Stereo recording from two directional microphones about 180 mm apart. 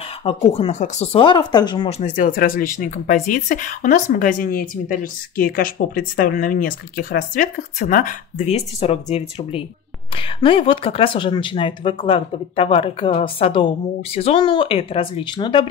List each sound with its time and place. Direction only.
0.2 s speech: 35° left (ahead or behind)
2.0 s speech: 45° left (ahead or behind); by 15.6 s 25° left (ahead or behind)